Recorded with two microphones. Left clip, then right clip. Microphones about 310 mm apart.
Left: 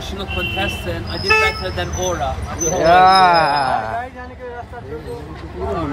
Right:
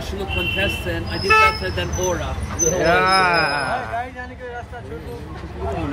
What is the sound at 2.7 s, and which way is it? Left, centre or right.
Speech, left.